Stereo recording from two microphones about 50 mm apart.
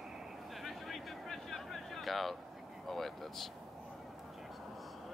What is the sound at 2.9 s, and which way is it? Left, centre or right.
Speech, centre.